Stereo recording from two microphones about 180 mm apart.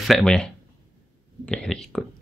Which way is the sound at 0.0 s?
Centre (ahead or behind).